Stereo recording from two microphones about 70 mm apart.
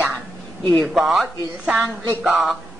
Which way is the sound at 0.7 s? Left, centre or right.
Centre.